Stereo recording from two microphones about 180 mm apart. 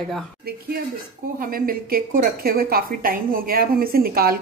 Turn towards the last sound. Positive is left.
turn(degrees=-55)  # may be behind; listen again after turning